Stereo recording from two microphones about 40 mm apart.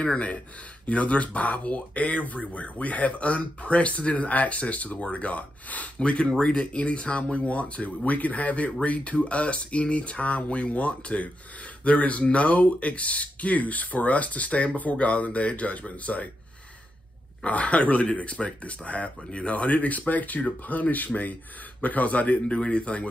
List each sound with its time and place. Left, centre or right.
0.0 s speech: left
5.9 s speech: left
17.5 s speech: left